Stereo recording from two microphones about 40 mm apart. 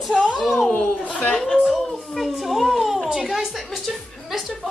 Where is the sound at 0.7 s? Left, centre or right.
Left.